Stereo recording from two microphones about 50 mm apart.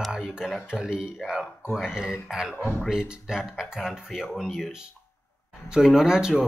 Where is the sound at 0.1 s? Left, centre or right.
Centre.